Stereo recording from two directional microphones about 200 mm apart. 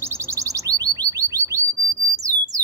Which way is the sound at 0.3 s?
15° right (ahead or behind).